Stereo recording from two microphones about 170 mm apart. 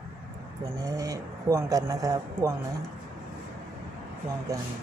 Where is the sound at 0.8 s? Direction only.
20° right (ahead or behind).